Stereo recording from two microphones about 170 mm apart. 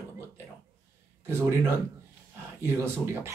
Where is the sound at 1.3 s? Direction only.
15° right (ahead or behind).